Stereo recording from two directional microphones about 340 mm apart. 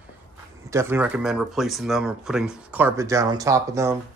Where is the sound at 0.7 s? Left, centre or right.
Centre.